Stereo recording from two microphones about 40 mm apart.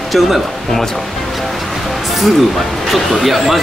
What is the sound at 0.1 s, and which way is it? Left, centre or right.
Speech, centre.